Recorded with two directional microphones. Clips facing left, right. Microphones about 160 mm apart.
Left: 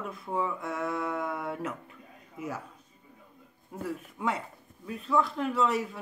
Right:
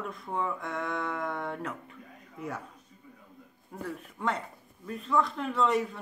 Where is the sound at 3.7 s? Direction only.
5° left (ahead or behind).